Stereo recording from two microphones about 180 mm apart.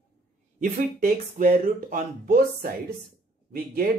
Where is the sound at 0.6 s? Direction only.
45° right (ahead or behind).